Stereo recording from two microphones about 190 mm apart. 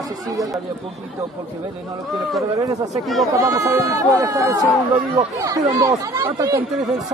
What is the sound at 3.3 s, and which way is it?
Speech, 20° right (ahead or behind).